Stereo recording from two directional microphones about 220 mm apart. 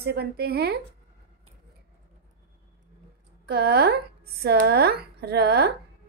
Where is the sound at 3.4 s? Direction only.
45° right (ahead or behind).